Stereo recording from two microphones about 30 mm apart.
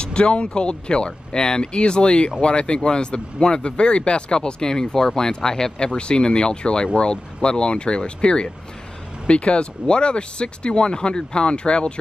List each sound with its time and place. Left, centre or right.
0.0 s speech: left
5.9 s speech: left